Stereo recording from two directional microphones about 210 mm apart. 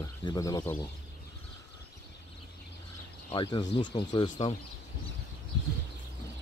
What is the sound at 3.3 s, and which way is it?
Speech, 25° left (ahead or behind).